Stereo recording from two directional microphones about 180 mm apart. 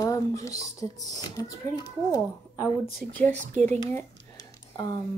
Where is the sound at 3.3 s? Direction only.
40° right (ahead or behind).